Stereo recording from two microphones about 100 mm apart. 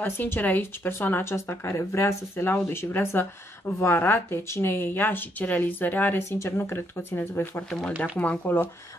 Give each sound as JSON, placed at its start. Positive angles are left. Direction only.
{"t": 0.0, "sound": "speech", "side_deg": 20}